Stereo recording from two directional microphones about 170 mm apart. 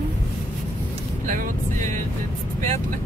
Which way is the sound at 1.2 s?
45° right (ahead or behind).